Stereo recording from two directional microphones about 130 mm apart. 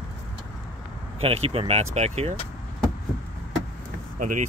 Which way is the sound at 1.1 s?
50° right (ahead or behind).